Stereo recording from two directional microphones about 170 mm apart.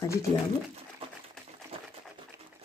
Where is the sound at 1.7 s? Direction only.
35° right (ahead or behind).